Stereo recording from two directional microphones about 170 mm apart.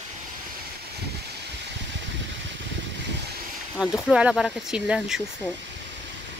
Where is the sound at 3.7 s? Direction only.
5° right (ahead or behind).